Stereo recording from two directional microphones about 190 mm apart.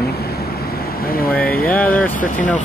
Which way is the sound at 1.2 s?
50° left (ahead or behind).